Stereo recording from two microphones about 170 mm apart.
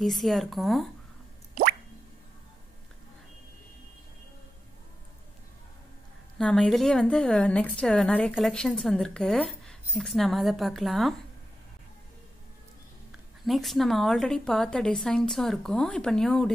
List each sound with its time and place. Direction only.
0.0 s a woman's voice: centre (ahead or behind)
1.5 s plop: 55° right (ahead or behind)
6.3 s a woman's voice: 5° left (ahead or behind)
13.5 s a woman's voice: centre (ahead or behind)